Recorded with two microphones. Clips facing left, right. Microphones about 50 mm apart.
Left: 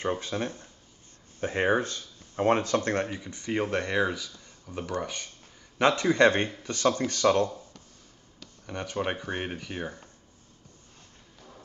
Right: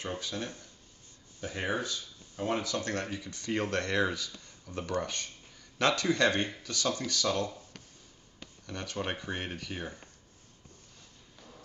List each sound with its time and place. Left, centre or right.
0.2 s speech: left; by 5.3 s centre
5.8 s speech: left
8.6 s speech: left